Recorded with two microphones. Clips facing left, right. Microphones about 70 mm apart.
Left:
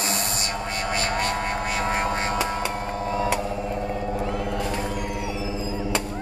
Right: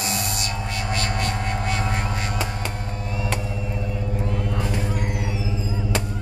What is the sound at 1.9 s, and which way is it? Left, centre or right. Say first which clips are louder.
Hum: left 3 dB; left.